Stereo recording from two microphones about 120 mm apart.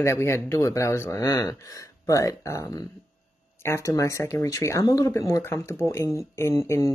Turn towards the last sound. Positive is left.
turn(degrees=25)  # may be behind; listen again after turning